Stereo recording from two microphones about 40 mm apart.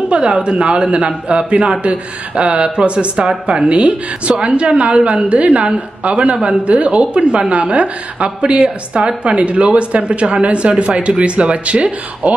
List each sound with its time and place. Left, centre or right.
0.1 s a man's voice: right